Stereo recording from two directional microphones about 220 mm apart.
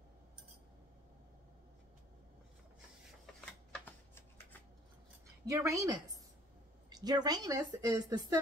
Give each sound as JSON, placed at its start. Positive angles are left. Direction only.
{"t": 3.3, "sound": "shuffling cards", "side_deg": 5}
{"t": 5.5, "sound": "a woman's voice", "side_deg": -15}